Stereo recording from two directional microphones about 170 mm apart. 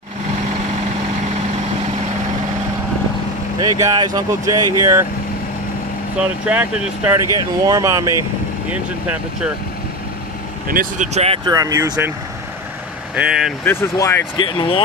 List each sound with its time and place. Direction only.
3.5 s speech: 20° right (ahead or behind)
6.4 s speech: 10° right (ahead or behind)
8.6 s speech: 10° right (ahead or behind)
10.7 s speech: 55° right (ahead or behind)
11.1 s speech: 35° right (ahead or behind)
11.5 s speech: 20° right (ahead or behind)
13.1 s speech: 5° right (ahead or behind)
13.7 s speech: 15° left (ahead or behind)
14.3 s speech: 30° left (ahead or behind)